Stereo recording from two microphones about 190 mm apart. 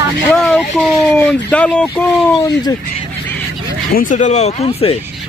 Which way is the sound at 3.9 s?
40° left (ahead or behind).